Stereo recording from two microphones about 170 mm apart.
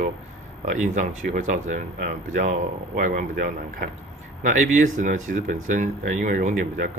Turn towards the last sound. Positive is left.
turn(degrees=-50)  # may be behind; listen again after turning